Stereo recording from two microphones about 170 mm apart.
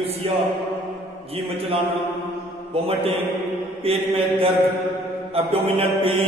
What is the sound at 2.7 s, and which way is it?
Mantra, 35° right (ahead or behind).